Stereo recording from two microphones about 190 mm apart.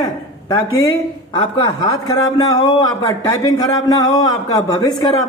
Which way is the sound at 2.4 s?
20° left (ahead or behind).